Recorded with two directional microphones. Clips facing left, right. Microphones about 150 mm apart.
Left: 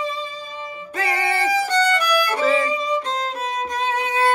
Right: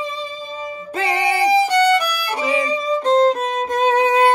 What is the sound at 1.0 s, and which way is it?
Music, 25° right (ahead or behind).